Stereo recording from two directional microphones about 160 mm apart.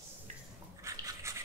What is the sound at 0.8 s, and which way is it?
Dog, 20° right (ahead or behind).